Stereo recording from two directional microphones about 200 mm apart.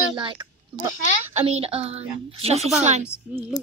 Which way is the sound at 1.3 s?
30° right (ahead or behind).